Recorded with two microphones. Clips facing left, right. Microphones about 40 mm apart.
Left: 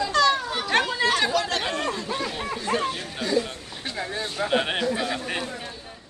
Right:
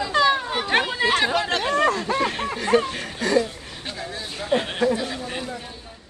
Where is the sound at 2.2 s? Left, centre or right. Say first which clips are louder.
Right 4 dB; right.